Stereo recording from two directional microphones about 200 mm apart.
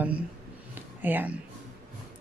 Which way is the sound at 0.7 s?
10° right (ahead or behind).